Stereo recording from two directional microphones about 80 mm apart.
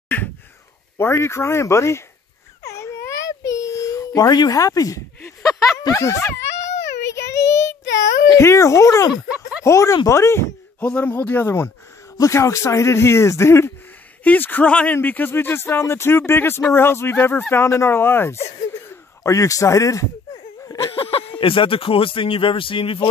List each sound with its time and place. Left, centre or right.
0.9 s speech: left
2.6 s a sound: left
5.2 s speech: left
7.1 s child singing: left
8.4 s speech: left
10.8 s speech: centre; by 13.7 s left
14.2 s speech: left
21.4 s speech: left